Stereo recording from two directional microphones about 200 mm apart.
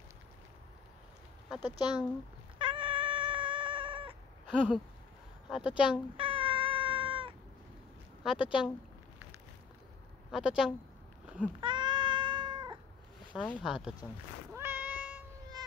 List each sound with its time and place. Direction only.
1.6 s speech: 20° left (ahead or behind)
2.6 s cat: 25° right (ahead or behind)
4.5 s a sound: 5° right (ahead or behind)
5.5 s speech: 5° right (ahead or behind)
6.1 s cat: 25° right (ahead or behind)
8.2 s speech: 5° right (ahead or behind)
10.3 s speech: 5° right (ahead or behind)
11.6 s cat: 25° right (ahead or behind)
13.3 s speech: centre (ahead or behind)
14.5 s cat: 10° right (ahead or behind)